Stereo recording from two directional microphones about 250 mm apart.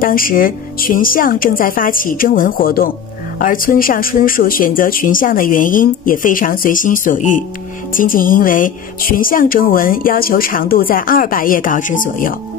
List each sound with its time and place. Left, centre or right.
0.0 s a woman's voice: left